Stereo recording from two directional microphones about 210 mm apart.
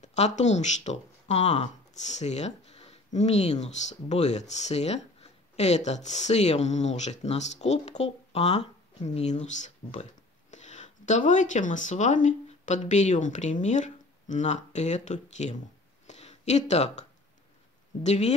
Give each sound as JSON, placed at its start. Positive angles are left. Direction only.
{"t": 0.0, "sound": "speech", "side_deg": 35}
{"t": 16.1, "sound": "a sound", "side_deg": 30}
{"t": 18.0, "sound": "speech", "side_deg": 35}